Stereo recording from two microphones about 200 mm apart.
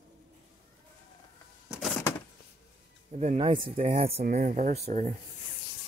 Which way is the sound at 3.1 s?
30° right (ahead or behind).